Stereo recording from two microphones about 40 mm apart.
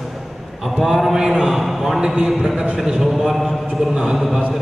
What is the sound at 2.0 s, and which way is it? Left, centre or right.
Speech, centre.